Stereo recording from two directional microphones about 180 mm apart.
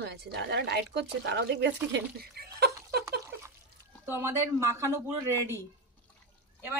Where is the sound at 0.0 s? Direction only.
65° right (ahead or behind).